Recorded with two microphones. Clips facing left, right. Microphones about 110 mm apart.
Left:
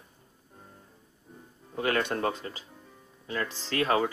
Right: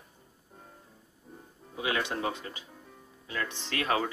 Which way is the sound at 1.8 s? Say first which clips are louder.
Left 3 dB; 50° left (ahead or behind).